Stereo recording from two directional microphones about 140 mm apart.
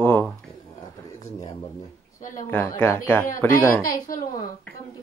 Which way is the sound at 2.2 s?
70° left (ahead or behind).